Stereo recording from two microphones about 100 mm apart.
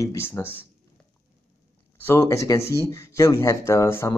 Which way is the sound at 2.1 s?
30° left (ahead or behind).